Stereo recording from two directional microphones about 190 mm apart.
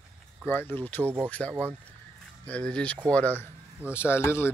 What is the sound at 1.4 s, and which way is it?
Speech, 10° right (ahead or behind).